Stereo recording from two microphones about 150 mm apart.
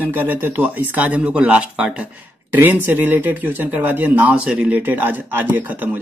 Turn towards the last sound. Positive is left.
turn(degrees=-10)  # may be behind; listen again after turning